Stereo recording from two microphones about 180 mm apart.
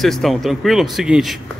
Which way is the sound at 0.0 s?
Centre (ahead or behind).